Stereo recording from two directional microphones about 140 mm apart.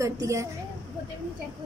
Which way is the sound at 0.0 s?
20° right (ahead or behind).